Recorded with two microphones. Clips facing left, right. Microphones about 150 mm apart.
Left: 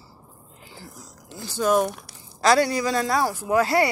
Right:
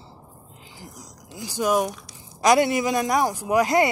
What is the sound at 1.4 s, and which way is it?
Speech, 15° right (ahead or behind).